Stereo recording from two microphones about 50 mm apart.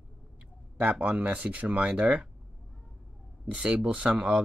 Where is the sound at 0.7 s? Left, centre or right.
Right.